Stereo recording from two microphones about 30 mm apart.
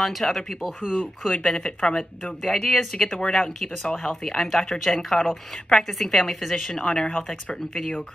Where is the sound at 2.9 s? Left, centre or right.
Left.